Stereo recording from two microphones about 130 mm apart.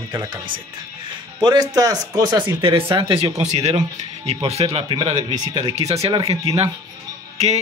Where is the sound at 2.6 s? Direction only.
45° right (ahead or behind).